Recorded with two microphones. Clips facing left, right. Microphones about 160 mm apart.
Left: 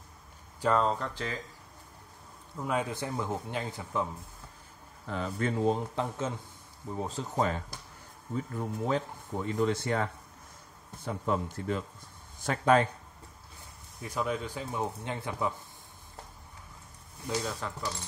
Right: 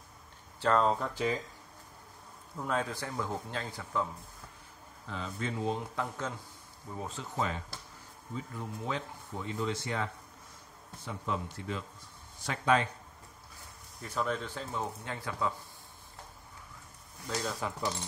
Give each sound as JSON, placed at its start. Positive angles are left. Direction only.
{"t": 0.6, "sound": "speech", "side_deg": 5}
{"t": 2.5, "sound": "a man's voice", "side_deg": 5}
{"t": 2.8, "sound": "a man's voice", "side_deg": 20}
{"t": 5.0, "sound": "speech", "side_deg": 50}
{"t": 5.9, "sound": "a man's voice", "side_deg": 25}
{"t": 7.0, "sound": "speech", "side_deg": 35}
{"t": 11.1, "sound": "speech", "side_deg": 45}
{"t": 14.0, "sound": "a man's voice", "side_deg": 10}
{"t": 17.3, "sound": "speech", "side_deg": 5}